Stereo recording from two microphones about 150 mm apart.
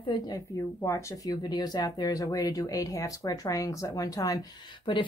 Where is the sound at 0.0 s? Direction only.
25° left (ahead or behind).